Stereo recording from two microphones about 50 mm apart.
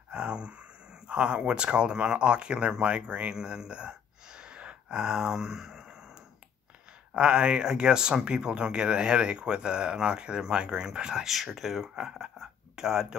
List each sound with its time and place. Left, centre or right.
0.1 s speech: right
3.3 s a sound: centre
7.2 s speech: right